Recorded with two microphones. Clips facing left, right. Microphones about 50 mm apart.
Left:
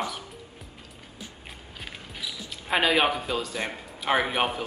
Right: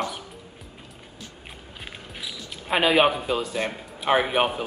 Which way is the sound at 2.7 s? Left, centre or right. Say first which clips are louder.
Right 3 dB; centre.